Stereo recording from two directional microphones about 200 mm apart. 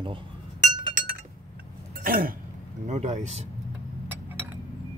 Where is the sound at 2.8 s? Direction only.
35° right (ahead or behind).